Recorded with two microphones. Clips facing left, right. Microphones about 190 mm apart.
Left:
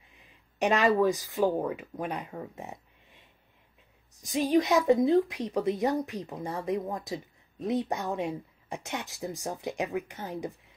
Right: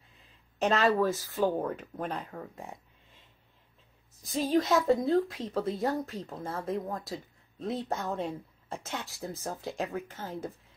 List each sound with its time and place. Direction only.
0.6 s speech: 15° left (ahead or behind)
4.2 s speech: 15° left (ahead or behind)